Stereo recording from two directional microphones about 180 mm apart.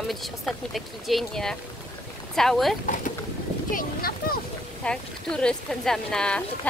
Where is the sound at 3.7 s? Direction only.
55° left (ahead or behind).